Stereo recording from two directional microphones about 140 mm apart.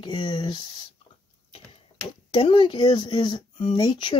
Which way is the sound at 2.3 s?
35° left (ahead or behind).